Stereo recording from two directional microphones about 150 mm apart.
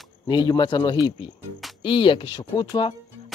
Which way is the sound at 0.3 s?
30° left (ahead or behind).